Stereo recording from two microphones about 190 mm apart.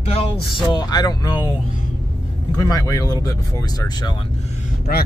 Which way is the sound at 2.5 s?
20° left (ahead or behind).